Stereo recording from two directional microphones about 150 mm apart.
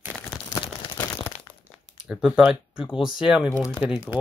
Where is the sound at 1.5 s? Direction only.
5° right (ahead or behind).